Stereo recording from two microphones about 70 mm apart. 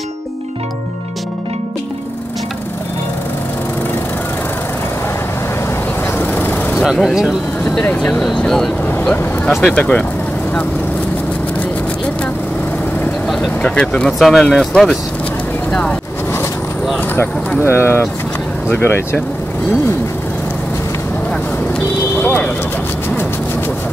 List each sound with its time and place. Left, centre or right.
6.1 s vehicle: left
6.7 s speech: centre
7.8 s speech: left
8.4 s speech: centre
13.6 s speech: centre
14.1 s speech: centre
17.6 s speech: left
22.1 s vehicle: left